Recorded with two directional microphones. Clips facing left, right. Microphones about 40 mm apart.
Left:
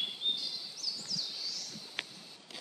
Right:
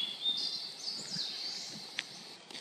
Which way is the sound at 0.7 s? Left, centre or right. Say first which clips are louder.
Left 2 dB; right.